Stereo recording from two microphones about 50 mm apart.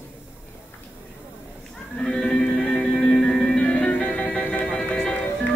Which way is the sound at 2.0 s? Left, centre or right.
Centre.